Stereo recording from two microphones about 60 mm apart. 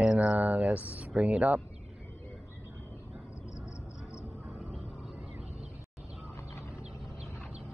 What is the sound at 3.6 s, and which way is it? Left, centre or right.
Vehicle, centre.